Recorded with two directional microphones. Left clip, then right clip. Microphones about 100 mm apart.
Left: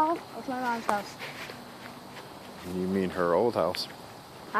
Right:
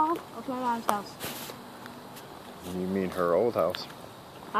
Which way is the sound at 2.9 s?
35° left (ahead or behind).